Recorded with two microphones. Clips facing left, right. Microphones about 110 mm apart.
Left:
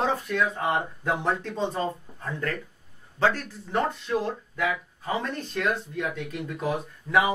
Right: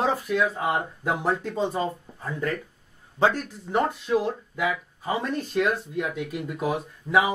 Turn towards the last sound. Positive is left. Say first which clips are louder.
# right 1 dB
turn(degrees=-5)  # may be behind; listen again after turning